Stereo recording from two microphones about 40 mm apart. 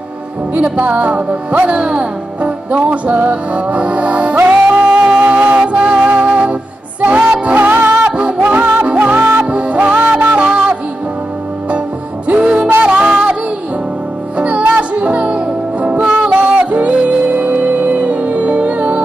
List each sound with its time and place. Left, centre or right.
0.6 s music: right
5.3 s music: right
5.6 s music: right
7.0 s music: right
7.7 s music: right
8.2 s music: right
8.5 s music: right
10.4 s music: right
12.3 s music: right
14.4 s music: right
16.0 s music: centre
16.3 s music: right